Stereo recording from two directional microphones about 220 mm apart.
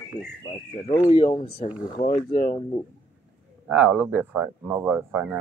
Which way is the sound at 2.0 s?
35° left (ahead or behind).